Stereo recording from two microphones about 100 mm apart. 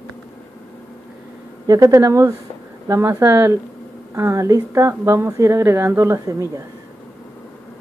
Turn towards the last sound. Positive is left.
turn(degrees=-35)  # may be behind; listen again after turning